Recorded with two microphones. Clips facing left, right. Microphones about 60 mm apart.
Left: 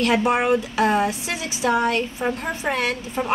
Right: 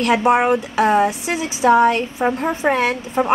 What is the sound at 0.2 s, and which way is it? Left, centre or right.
A woman's voice, right.